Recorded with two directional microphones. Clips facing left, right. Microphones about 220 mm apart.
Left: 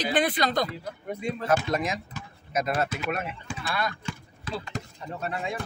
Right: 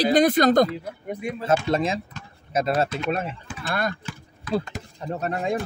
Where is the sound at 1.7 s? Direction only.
30° right (ahead or behind).